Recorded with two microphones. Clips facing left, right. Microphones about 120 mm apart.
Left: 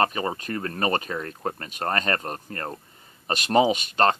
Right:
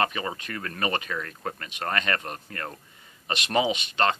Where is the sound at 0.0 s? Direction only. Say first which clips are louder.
Left 3 dB; 35° left (ahead or behind).